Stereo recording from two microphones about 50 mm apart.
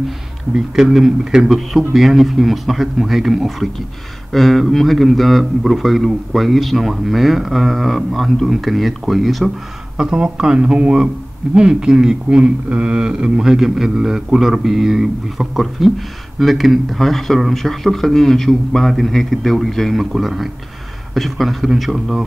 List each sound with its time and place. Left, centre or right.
0.6 s a man's voice: centre
9.9 s a man's voice: centre